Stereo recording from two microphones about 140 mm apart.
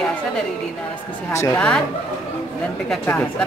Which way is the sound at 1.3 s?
20° left (ahead or behind).